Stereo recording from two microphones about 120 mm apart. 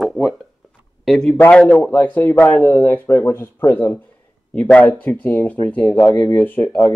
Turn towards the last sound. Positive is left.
turn(degrees=15)  # may be behind; listen again after turning